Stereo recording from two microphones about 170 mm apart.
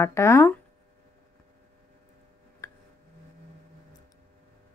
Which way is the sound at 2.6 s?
20° left (ahead or behind).